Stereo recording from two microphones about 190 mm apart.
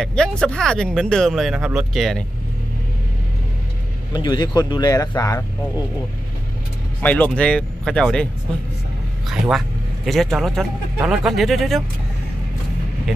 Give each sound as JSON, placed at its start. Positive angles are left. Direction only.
{"t": 0.0, "sound": "speech", "side_deg": 5}
{"t": 4.1, "sound": "speech", "side_deg": 20}
{"t": 7.0, "sound": "speech", "side_deg": 10}
{"t": 9.3, "sound": "speech", "side_deg": 0}